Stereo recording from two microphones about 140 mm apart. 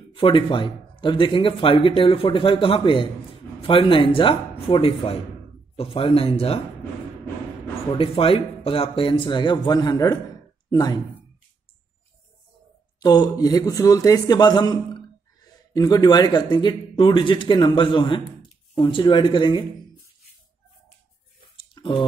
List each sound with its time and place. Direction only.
0.1 s speech: 40° left (ahead or behind)
8.0 s speech: 40° left (ahead or behind)
13.0 s speech: 30° left (ahead or behind)
21.5 s a sound: 35° left (ahead or behind)